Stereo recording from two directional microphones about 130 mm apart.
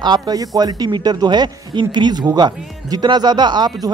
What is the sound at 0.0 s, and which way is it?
Speech, 30° right (ahead or behind).